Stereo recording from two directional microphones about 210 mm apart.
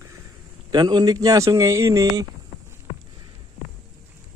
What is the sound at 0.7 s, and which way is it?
Speech, 20° right (ahead or behind).